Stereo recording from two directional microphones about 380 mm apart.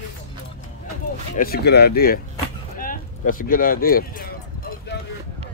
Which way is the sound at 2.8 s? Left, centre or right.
Left.